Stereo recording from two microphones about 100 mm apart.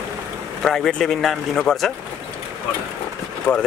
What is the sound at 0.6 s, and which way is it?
Speech, 5° left (ahead or behind).